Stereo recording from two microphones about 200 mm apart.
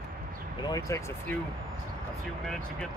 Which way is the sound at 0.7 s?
15° left (ahead or behind).